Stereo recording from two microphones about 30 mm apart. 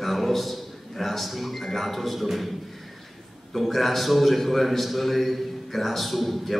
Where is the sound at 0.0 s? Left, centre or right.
Centre.